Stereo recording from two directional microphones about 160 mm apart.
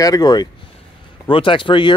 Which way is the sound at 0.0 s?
25° left (ahead or behind).